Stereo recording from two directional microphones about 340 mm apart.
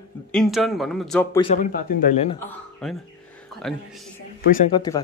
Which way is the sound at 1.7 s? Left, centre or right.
Left.